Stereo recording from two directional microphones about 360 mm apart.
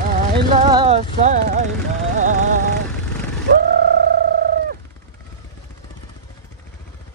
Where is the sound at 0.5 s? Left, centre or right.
Centre.